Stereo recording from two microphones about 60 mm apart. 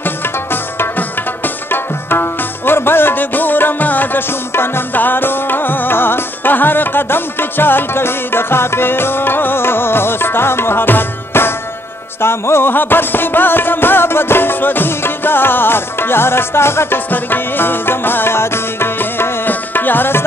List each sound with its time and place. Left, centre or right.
0.0 s tabla: left
12.2 s music: left